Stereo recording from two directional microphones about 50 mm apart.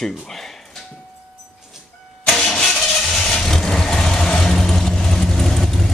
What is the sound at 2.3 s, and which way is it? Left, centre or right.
Vehicle, centre.